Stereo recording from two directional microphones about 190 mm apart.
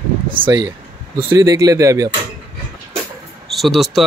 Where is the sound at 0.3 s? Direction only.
25° right (ahead or behind).